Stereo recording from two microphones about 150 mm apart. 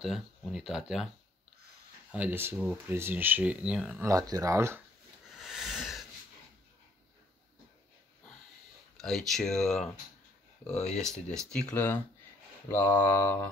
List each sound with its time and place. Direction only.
0.0 s speech: centre (ahead or behind)
2.1 s speech: 10° right (ahead or behind)
4.0 s speech: 25° right (ahead or behind)
5.3 s a sound: centre (ahead or behind)
8.9 s speech: centre (ahead or behind)
11.0 s speech: 5° left (ahead or behind)
12.6 s mantra: 15° left (ahead or behind)